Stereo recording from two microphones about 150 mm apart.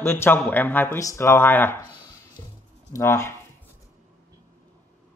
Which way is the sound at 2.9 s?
20° left (ahead or behind).